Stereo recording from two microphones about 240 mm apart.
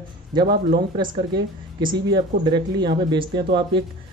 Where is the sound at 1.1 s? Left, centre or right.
Centre.